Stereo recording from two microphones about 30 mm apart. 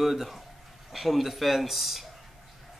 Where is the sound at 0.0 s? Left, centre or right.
Centre.